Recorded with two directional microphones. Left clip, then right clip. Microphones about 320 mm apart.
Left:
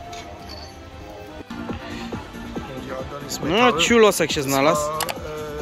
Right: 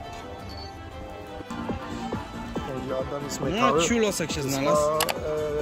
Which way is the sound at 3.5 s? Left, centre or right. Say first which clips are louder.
Left 6 dB; centre.